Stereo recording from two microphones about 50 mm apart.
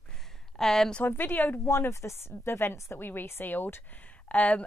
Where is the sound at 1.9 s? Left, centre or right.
Left.